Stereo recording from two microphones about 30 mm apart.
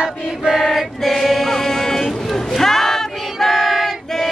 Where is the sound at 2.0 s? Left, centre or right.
Centre.